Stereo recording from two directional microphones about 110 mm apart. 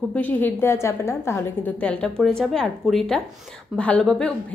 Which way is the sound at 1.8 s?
10° left (ahead or behind).